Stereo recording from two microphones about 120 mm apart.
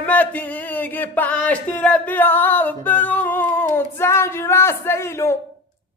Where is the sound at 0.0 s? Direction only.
10° left (ahead or behind).